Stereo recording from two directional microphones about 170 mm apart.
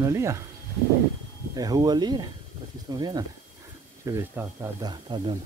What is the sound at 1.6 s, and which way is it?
Speech, 20° right (ahead or behind).